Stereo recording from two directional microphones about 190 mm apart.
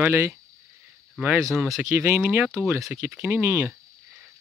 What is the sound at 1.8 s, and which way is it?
Speech, 10° right (ahead or behind).